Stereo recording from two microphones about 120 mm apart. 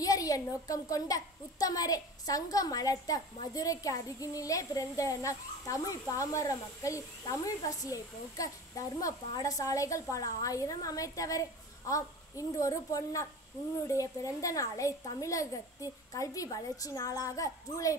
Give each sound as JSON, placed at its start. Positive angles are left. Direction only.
{"t": 0.0, "sound": "a child's voice", "side_deg": 30}